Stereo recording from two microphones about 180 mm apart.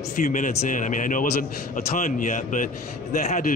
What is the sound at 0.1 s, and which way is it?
A man's voice, 45° left (ahead or behind).